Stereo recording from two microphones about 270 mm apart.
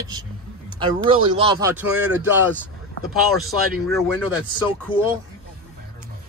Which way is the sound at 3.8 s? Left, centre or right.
Centre.